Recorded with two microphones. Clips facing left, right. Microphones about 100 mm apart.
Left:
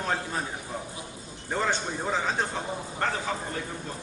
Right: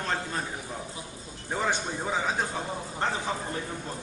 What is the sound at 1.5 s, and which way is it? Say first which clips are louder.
Speech: left 1 dB; 10° right (ahead or behind).